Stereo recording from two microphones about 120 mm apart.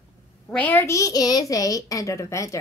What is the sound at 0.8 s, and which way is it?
A woman's voice, 25° left (ahead or behind).